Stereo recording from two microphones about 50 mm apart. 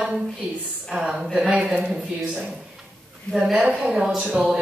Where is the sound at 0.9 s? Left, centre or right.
Centre.